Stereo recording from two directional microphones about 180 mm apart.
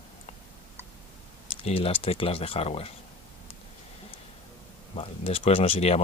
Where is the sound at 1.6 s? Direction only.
30° left (ahead or behind).